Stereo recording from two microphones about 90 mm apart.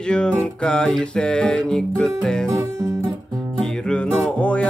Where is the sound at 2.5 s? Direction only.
35° right (ahead or behind).